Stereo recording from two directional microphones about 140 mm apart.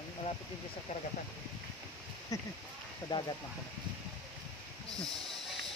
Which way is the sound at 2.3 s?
25° left (ahead or behind).